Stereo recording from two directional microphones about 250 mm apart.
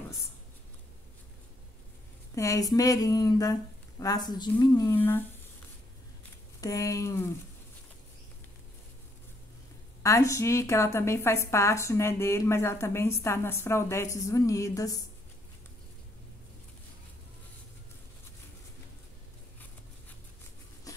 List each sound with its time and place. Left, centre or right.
2.3 s a woman's voice: centre
6.6 s a woman's voice: centre
10.0 s a woman's voice: centre